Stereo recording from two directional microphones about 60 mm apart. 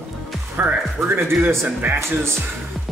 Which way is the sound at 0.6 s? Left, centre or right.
Right.